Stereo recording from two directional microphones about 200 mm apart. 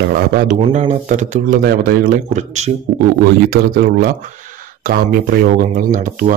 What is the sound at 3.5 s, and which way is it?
Speech, 45° right (ahead or behind).